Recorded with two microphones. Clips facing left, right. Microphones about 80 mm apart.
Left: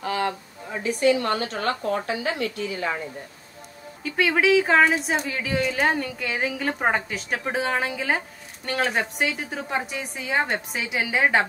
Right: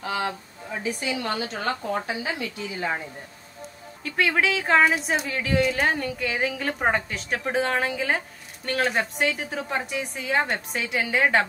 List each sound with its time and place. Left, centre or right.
0.0 s a sound: left
0.8 s a woman's voice: left
4.0 s a woman's voice: centre